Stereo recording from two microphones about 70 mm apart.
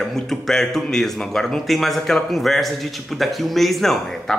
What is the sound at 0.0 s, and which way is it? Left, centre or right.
A man's voice, centre.